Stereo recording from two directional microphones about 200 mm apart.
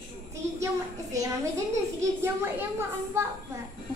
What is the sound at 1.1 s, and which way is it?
Speech, 15° right (ahead or behind).